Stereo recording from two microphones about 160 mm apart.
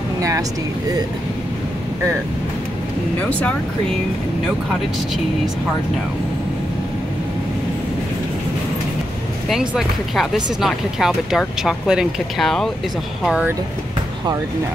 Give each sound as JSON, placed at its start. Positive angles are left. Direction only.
{"t": 0.2, "sound": "speech", "side_deg": -20}
{"t": 3.2, "sound": "speech", "side_deg": 10}
{"t": 9.5, "sound": "speech", "side_deg": 0}